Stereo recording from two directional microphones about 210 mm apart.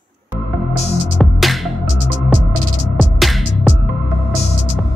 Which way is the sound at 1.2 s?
Centre (ahead or behind).